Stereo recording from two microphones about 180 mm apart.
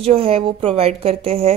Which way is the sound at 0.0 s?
30° right (ahead or behind).